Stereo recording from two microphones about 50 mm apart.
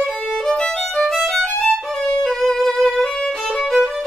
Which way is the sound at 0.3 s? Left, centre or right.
Centre.